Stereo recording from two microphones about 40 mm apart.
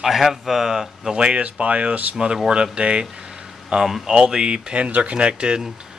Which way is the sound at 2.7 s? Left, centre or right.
Right.